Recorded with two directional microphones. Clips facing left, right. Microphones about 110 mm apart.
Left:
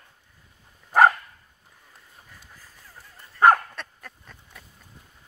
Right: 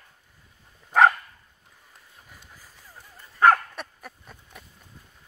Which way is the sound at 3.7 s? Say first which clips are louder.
Right 2 dB; 15° right (ahead or behind).